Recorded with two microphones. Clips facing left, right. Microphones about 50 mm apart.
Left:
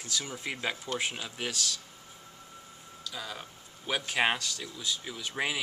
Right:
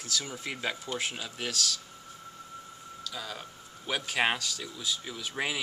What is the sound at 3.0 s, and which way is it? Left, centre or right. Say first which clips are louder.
Speech: even; centre.